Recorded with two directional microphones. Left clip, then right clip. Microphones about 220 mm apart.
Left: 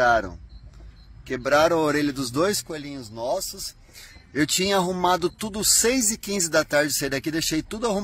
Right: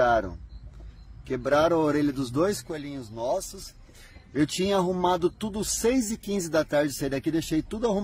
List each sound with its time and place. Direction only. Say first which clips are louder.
1.2 s speech: left 3 dB; 15° left (ahead or behind)
2.7 s speech: left 1 dB; 25° left (ahead or behind)
3.5 s speech: left 7 dB; 15° left (ahead or behind)